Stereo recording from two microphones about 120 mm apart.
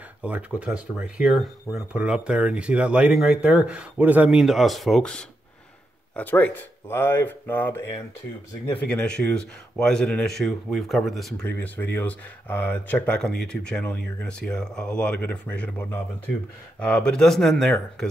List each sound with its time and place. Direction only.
0.2 s speech: 10° right (ahead or behind); by 5.2 s 5° left (ahead or behind)
6.1 s speech: 15° left (ahead or behind)
11.4 s speech: 15° left (ahead or behind)